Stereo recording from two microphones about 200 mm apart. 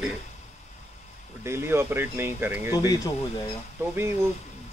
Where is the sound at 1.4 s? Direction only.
10° right (ahead or behind).